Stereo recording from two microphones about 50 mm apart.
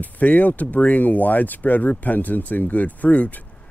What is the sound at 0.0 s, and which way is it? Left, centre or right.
Speech, left.